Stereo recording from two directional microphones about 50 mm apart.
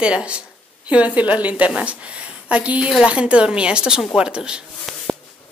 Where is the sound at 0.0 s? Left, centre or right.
Right.